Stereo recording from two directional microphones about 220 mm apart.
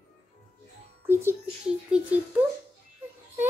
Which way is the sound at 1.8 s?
5° right (ahead or behind).